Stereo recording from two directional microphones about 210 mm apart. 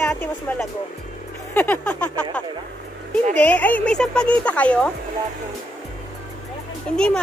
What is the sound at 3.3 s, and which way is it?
A woman's voice, 10° left (ahead or behind).